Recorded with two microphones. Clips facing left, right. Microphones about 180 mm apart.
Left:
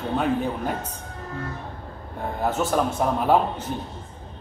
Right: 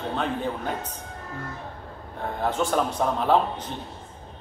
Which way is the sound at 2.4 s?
5° left (ahead or behind).